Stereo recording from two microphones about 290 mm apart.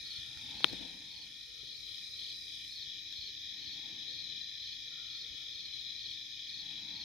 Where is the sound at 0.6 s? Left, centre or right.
Centre.